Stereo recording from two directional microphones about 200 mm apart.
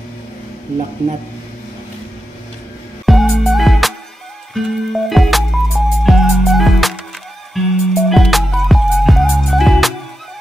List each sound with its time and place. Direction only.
3.1 s music: centre (ahead or behind)